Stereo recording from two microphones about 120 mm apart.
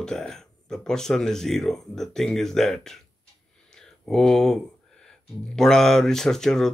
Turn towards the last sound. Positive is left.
turn(degrees=5)  # may be behind; listen again after turning